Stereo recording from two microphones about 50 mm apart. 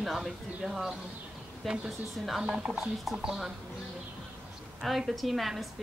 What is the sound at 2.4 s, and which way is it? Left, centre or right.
Speech, centre.